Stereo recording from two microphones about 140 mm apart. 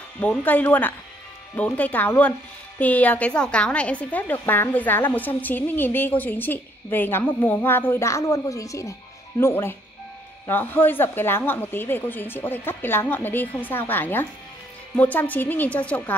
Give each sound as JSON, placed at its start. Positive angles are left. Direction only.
{"t": 0.2, "sound": "a woman's voice", "side_deg": 10}